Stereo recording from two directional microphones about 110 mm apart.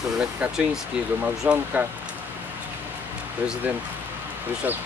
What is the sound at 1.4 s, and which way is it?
Speech, 10° right (ahead or behind).